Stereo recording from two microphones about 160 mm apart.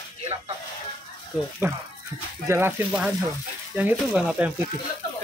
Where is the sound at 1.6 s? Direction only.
15° right (ahead or behind).